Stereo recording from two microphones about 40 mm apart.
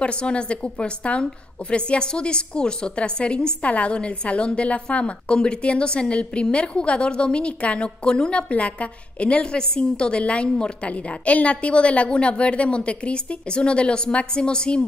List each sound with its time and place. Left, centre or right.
0.0 s a woman's voice: left